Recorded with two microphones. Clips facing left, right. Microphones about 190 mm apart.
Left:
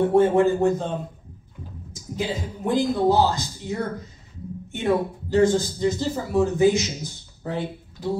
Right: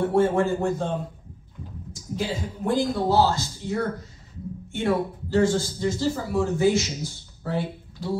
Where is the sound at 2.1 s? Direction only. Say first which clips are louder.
Left 1 dB; 15° left (ahead or behind).